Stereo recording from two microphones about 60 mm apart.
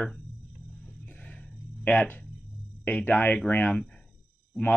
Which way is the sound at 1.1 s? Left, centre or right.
Left.